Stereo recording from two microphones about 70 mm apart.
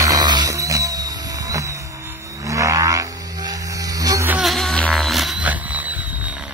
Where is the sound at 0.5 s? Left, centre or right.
Right.